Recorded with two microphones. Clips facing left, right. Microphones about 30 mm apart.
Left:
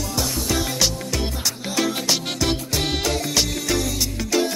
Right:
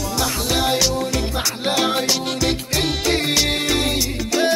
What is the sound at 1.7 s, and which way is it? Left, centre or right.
Music, right.